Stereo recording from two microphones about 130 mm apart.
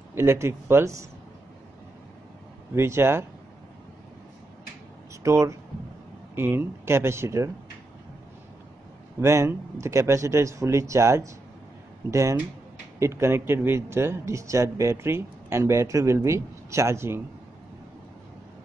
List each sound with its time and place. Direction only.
0.1 s a man's voice: 20° right (ahead or behind)
2.7 s a man's voice: 20° right (ahead or behind)
5.2 s a man's voice: 25° right (ahead or behind)
9.2 s a man's voice: 20° right (ahead or behind)